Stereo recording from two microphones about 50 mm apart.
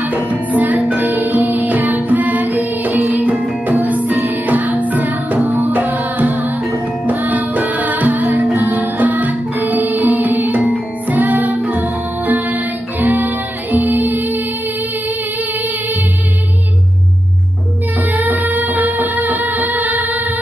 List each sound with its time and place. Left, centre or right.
0.0 s music: right
18.0 s music of bollywood: right